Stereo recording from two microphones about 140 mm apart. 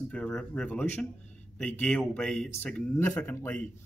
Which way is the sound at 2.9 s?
20° left (ahead or behind).